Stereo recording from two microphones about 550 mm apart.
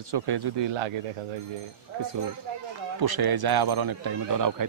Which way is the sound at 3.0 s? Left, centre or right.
Right.